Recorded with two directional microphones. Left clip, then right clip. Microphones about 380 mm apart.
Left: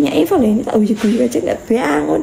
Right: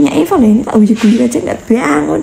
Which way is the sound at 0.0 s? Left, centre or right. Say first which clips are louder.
Right 3 dB; centre.